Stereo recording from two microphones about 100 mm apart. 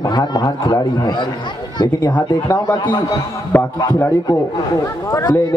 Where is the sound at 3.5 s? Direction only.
20° left (ahead or behind).